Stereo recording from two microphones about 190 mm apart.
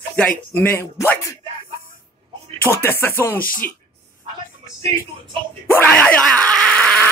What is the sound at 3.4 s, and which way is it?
Speech, 50° left (ahead or behind).